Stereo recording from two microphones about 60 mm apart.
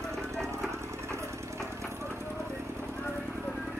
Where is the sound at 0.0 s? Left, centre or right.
Right.